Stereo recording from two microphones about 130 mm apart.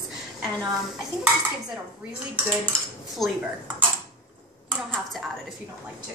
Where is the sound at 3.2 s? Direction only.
Centre (ahead or behind).